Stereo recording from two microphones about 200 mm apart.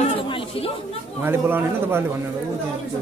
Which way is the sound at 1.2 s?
10° right (ahead or behind).